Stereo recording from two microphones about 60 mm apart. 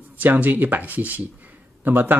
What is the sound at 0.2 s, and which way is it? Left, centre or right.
Speech, right.